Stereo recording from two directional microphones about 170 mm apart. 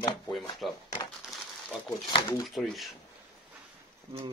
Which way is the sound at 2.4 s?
Centre (ahead or behind).